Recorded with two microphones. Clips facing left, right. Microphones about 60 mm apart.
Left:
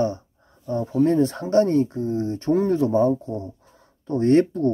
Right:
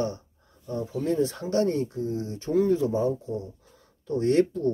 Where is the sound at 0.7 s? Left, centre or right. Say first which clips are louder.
Left 8 dB; left.